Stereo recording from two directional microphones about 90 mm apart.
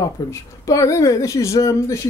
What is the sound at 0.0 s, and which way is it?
A woman's voice, 40° left (ahead or behind).